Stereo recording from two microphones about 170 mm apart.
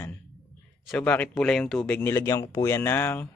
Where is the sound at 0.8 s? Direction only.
10° left (ahead or behind).